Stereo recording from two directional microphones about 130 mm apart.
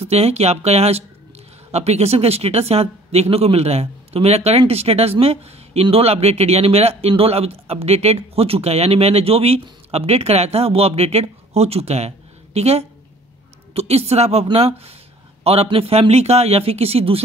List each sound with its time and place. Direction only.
0.0 s speech: 55° right (ahead or behind)